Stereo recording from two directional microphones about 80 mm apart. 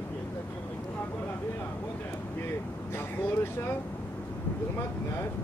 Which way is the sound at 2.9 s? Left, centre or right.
Left.